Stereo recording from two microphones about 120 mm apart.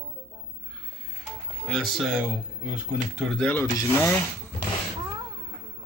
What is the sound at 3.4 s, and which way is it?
Speech, 10° left (ahead or behind).